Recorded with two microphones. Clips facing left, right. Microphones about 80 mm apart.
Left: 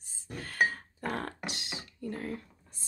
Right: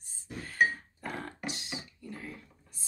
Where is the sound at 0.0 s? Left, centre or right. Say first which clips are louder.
Left 1 dB; left.